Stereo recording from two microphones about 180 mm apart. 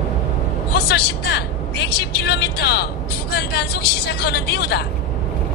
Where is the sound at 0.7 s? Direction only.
65° left (ahead or behind).